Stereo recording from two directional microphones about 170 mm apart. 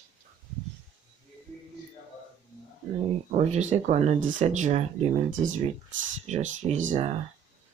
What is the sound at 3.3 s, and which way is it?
Speech, 40° right (ahead or behind).